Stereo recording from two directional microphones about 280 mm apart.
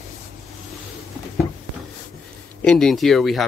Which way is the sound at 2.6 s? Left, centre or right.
Centre.